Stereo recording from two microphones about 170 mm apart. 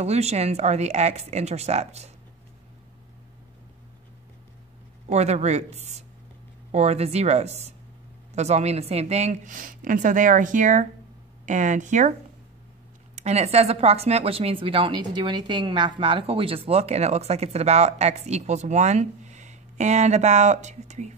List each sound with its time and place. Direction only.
0.0 s speech: 40° right (ahead or behind)
5.0 s speech: 40° right (ahead or behind)
13.1 s speech: 40° right (ahead or behind)